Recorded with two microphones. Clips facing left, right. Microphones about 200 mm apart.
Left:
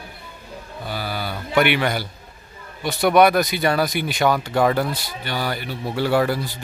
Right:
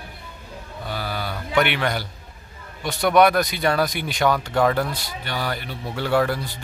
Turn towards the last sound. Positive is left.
turn(degrees=5)  # may be behind; listen again after turning